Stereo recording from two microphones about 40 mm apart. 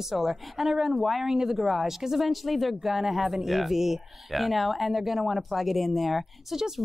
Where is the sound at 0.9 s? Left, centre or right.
Centre.